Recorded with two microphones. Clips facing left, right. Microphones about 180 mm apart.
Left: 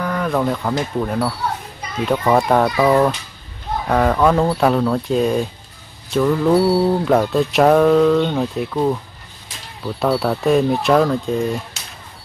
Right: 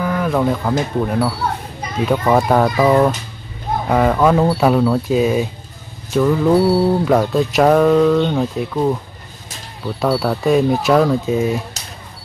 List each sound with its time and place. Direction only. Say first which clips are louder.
0.0 s speech: right 2 dB; 5° right (ahead or behind)
2.0 s mantra: right 1 dB; centre (ahead or behind)
9.9 s mantra: right 1 dB; centre (ahead or behind)
11.7 s music: right 2 dB; 40° right (ahead or behind)